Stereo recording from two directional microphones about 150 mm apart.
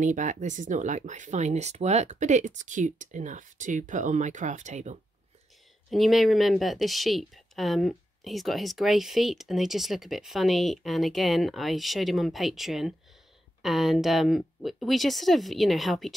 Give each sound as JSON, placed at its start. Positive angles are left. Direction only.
{"t": 0.0, "sound": "speech", "side_deg": -55}
{"t": 5.9, "sound": "speech", "side_deg": 0}